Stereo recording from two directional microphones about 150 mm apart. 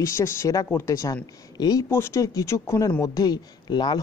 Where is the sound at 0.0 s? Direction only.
15° left (ahead or behind).